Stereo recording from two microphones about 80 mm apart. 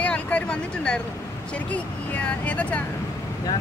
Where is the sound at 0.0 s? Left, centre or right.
Centre.